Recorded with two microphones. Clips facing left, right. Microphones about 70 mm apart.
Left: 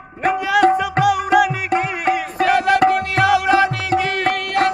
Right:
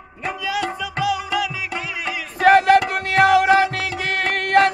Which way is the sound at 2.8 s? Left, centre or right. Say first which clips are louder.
Left 2 dB; left.